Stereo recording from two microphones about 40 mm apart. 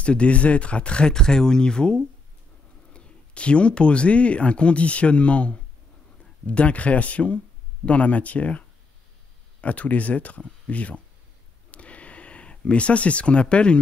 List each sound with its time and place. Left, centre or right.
0.0 s speech: left
1.1 s speech: centre; by 11.0 s left
11.7 s a sound: left